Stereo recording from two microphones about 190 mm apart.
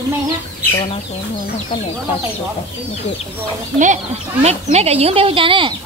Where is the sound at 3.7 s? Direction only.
40° right (ahead or behind).